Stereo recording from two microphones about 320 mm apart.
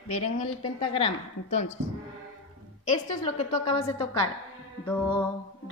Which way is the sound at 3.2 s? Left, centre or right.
Centre.